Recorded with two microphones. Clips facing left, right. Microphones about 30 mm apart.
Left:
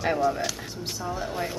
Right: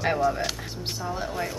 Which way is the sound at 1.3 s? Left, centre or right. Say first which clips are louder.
Even; centre.